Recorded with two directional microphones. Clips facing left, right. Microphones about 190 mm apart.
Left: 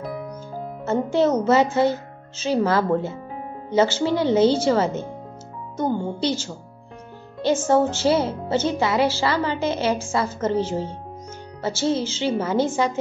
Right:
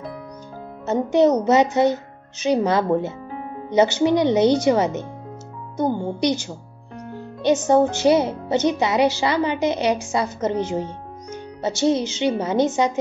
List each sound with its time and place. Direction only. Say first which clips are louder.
0.8 s a woman's voice: right 3 dB; 15° right (ahead or behind)
7.6 s a woman's voice: right 2 dB; 15° right (ahead or behind)